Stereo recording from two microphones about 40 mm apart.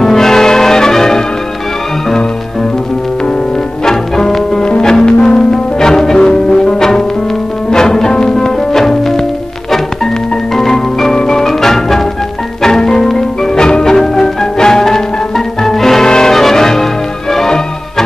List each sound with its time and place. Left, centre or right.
0.0 s change ringing: centre
3.8 s music: centre
10.5 s music: centre